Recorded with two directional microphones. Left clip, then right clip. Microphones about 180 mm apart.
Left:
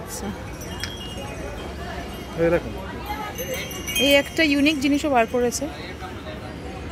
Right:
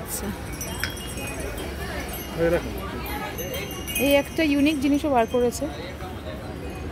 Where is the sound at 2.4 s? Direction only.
55° left (ahead or behind).